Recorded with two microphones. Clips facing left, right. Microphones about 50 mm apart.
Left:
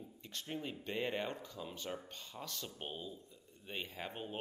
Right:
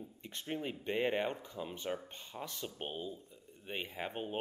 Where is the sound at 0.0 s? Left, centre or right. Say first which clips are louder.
Right 2 dB; right.